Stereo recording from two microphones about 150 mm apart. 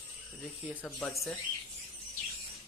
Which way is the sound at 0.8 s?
5° left (ahead or behind).